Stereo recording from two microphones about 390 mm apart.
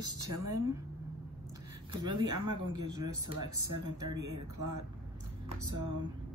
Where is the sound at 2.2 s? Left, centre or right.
Right.